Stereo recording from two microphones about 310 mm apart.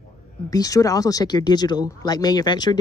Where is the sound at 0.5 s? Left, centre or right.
Centre.